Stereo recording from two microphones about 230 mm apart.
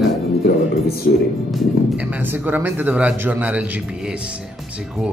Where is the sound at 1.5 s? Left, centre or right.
Centre.